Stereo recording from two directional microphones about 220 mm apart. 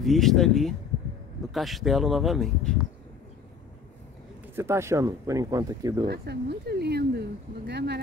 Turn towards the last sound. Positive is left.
turn(degrees=-50)  # may be behind; listen again after turning